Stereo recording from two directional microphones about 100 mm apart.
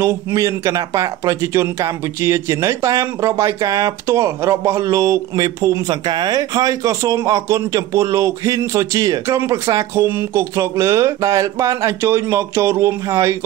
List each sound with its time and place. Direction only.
0.0 s speech: 30° right (ahead or behind)